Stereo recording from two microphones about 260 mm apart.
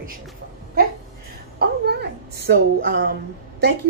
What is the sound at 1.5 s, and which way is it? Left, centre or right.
Speech, right.